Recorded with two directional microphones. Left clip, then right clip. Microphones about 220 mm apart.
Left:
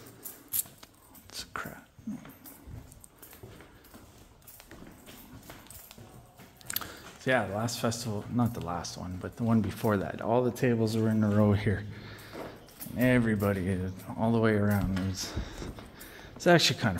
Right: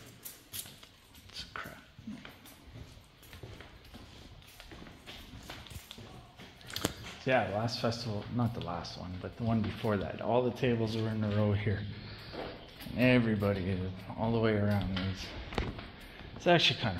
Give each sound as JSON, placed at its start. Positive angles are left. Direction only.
{"t": 1.3, "sound": "a sound", "side_deg": 60}
{"t": 7.2, "sound": "speech", "side_deg": 30}
{"t": 12.9, "sound": "a man's voice", "side_deg": 20}